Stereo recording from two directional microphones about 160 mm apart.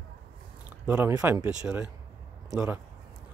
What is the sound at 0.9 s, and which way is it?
Speech, 10° right (ahead or behind).